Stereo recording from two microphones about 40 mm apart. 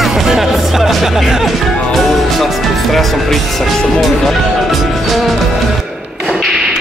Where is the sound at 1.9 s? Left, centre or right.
Centre.